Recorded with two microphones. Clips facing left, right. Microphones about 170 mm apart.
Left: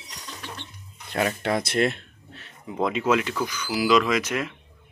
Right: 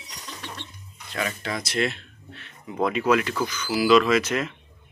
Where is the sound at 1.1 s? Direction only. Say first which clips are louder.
Left 5 dB; 55° left (ahead or behind).